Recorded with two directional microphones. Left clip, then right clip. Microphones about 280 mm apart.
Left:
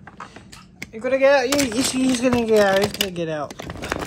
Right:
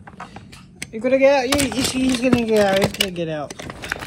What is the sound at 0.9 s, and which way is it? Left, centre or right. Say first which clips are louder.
Speech: right 3 dB; centre.